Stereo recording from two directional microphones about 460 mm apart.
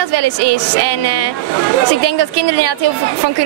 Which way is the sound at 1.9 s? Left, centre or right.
Right.